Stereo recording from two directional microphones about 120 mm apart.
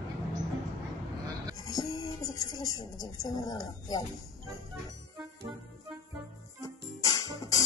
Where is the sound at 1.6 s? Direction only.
30° left (ahead or behind).